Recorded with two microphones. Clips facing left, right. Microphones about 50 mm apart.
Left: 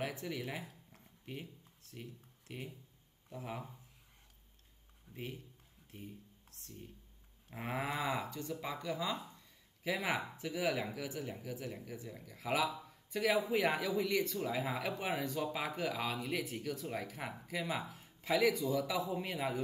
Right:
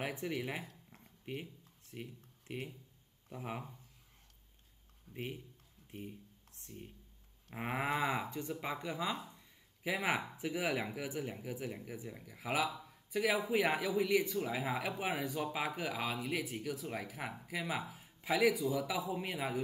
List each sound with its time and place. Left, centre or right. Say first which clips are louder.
0.0 s zipper: right 2 dB; centre
1.9 s a sound: right 2 dB; right
3.3 s speech: right 1 dB; centre
5.1 s speech: right 2 dB; right
5.9 s a sound: right 3 dB; right
7.5 s speech: right 2 dB; right